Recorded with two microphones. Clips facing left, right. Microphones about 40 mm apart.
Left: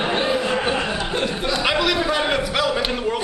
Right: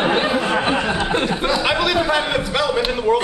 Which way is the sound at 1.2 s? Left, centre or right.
Centre.